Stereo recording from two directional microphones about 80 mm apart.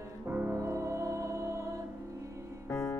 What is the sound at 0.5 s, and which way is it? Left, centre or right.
Music, right.